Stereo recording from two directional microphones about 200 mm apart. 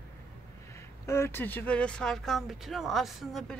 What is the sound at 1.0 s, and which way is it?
Speech, 15° left (ahead or behind).